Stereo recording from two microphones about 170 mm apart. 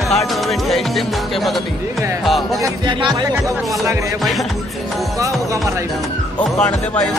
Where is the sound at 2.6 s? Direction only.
25° right (ahead or behind).